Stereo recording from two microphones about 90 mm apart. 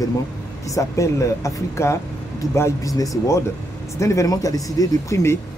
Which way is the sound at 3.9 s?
35° left (ahead or behind).